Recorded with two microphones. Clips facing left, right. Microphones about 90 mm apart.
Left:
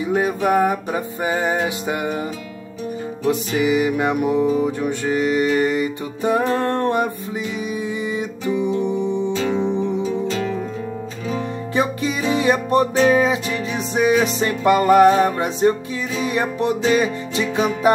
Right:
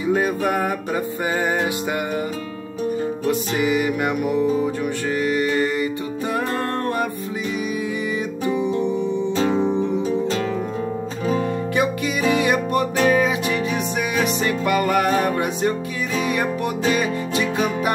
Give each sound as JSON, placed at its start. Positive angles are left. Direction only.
{"t": 0.1, "sound": "music", "side_deg": 20}
{"t": 3.3, "sound": "music", "side_deg": 20}
{"t": 9.3, "sound": "music", "side_deg": -40}
{"t": 11.7, "sound": "music", "side_deg": 30}